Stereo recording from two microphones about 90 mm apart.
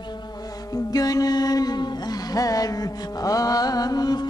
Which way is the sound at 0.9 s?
45° left (ahead or behind).